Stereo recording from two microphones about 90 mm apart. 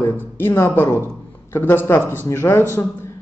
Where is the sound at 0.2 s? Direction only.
25° left (ahead or behind).